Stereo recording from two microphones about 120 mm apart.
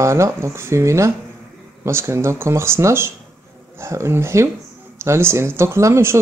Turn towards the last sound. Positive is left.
turn(degrees=-20)  # may be behind; listen again after turning